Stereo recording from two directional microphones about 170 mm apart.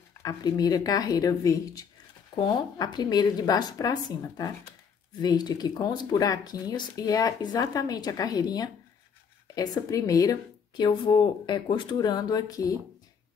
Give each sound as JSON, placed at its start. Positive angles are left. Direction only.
{"t": 0.2, "sound": "speech", "side_deg": 20}